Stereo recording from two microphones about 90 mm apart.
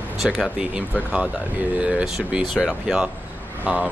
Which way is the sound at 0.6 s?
15° right (ahead or behind).